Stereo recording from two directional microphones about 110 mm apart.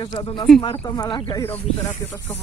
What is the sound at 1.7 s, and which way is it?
Speech, 70° left (ahead or behind).